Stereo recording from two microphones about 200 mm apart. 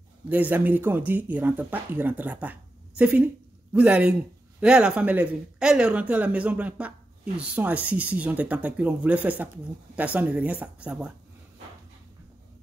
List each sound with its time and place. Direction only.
0.3 s a woman's voice: 10° right (ahead or behind)